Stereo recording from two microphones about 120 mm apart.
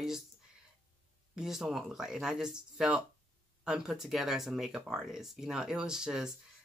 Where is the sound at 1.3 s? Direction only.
5° right (ahead or behind).